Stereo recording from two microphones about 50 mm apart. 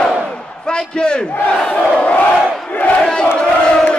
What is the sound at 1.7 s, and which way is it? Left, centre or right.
Crowd, left.